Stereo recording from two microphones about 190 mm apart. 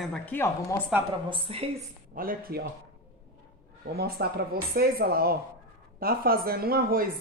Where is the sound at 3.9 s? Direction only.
55° right (ahead or behind).